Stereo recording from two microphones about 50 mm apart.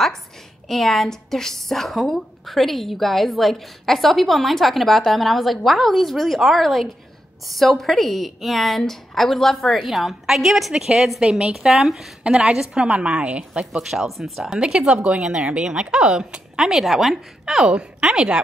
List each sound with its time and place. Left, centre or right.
0.7 s a woman's voice: centre
12.8 s speech: right; by 14.6 s centre
14.6 s speech: centre